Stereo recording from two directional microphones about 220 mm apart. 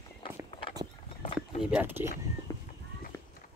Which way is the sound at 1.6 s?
5° right (ahead or behind).